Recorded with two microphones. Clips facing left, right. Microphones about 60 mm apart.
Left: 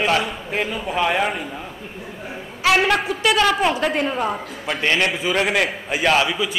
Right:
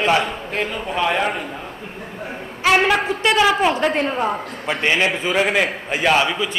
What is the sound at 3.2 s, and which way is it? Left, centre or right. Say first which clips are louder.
A woman's voice: right 2 dB; centre.